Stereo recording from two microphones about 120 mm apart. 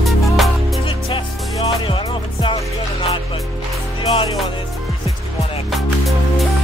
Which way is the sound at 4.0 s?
45° left (ahead or behind).